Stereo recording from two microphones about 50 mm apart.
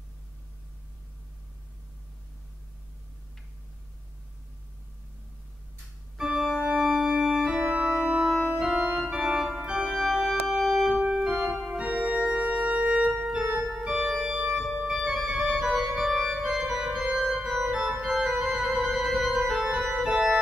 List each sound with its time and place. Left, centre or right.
6.1 s organ: centre
8.2 s organ: centre
8.5 s organ: centre
11.6 s organ: right